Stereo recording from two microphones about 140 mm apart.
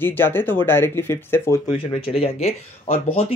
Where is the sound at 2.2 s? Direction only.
45° left (ahead or behind).